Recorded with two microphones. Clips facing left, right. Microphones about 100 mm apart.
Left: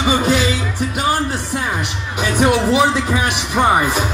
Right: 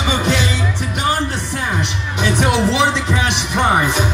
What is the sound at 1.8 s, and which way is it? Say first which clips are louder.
Speech: right 1 dB; 10° left (ahead or behind).